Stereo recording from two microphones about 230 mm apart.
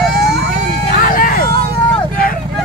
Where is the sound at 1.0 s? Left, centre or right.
Left.